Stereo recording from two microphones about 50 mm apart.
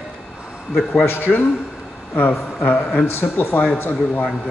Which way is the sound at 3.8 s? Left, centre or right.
Left.